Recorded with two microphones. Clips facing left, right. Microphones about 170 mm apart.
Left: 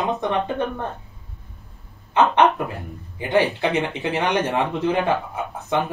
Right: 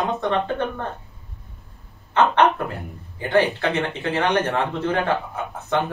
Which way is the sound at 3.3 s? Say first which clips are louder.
Even; 15° left (ahead or behind).